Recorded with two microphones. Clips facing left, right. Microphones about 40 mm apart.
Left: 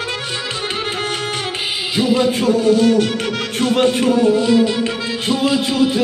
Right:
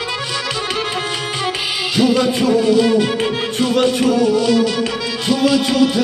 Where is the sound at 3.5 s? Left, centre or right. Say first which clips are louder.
Left 1 dB; left.